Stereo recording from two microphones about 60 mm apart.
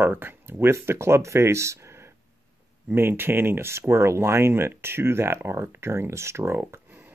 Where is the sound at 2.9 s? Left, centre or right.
Right.